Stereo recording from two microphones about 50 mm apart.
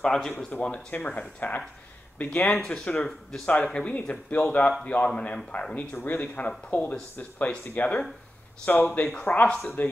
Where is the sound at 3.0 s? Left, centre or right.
Centre.